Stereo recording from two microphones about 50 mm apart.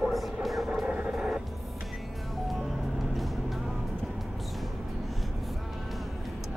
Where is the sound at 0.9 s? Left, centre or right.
Right.